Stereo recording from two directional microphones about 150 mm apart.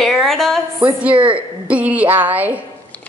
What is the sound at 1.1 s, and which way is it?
Speech, 35° right (ahead or behind).